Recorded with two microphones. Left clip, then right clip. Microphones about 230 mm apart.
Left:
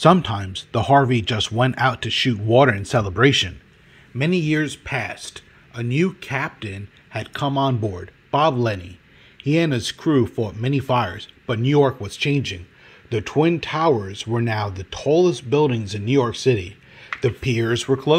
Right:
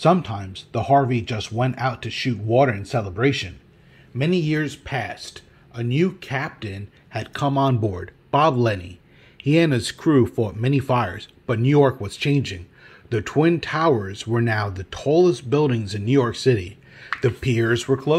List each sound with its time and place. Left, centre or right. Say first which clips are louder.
0.0 s speech: left 3 dB; left
4.2 s speech: left 1 dB; centre